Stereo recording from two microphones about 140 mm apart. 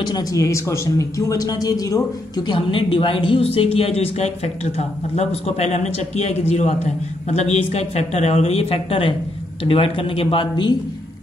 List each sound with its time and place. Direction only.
0.0 s speech: 25° left (ahead or behind)